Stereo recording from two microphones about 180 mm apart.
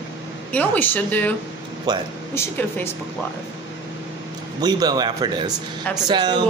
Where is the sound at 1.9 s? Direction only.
25° right (ahead or behind).